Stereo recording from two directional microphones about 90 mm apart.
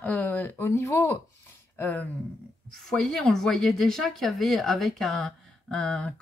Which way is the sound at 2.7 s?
5° left (ahead or behind).